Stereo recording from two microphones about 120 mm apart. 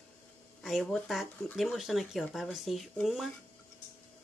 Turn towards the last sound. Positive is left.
turn(degrees=0)  # may be behind; listen again after turning